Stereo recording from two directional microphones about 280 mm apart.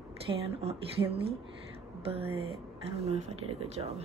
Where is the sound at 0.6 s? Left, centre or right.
Right.